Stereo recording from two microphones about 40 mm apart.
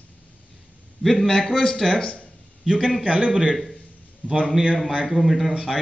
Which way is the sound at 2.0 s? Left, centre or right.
Left.